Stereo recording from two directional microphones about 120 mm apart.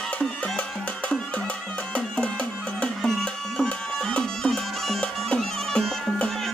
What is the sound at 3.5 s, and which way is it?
Bagpipes, 10° left (ahead or behind).